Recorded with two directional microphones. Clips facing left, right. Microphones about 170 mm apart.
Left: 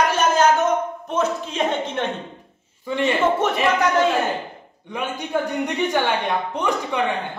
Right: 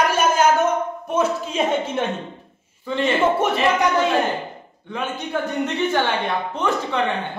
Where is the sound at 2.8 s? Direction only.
15° left (ahead or behind).